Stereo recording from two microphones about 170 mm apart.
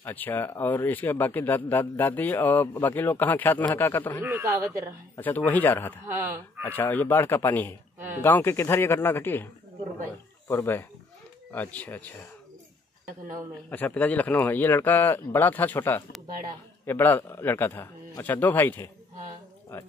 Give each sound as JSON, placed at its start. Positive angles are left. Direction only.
{"t": 0.0, "sound": "speech", "side_deg": 10}
{"t": 4.2, "sound": "a man's voice", "side_deg": -15}
{"t": 5.1, "sound": "speech", "side_deg": 10}
{"t": 6.0, "sound": "a man's voice", "side_deg": -15}
{"t": 6.6, "sound": "speech", "side_deg": 10}
{"t": 10.5, "sound": "speech", "side_deg": 15}
{"t": 13.7, "sound": "speech", "side_deg": 10}